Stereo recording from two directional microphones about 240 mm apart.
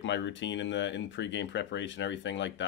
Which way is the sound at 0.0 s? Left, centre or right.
Left.